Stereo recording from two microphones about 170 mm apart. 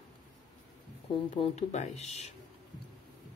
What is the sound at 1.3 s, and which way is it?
Speech, 40° left (ahead or behind).